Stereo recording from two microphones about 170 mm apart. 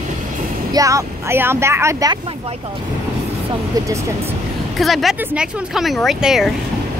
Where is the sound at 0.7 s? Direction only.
20° right (ahead or behind).